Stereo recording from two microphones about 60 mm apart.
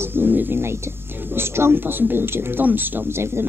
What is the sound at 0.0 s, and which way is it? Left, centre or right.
A woman's voice, right.